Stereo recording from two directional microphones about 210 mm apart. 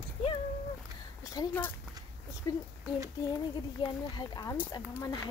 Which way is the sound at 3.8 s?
25° left (ahead or behind).